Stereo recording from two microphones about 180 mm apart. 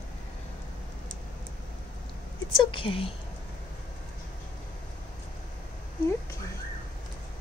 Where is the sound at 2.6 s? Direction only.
30° left (ahead or behind).